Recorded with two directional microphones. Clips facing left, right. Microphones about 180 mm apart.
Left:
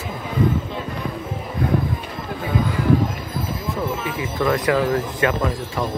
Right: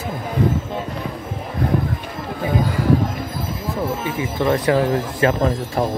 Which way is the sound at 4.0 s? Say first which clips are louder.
Right 1 dB; 25° right (ahead or behind).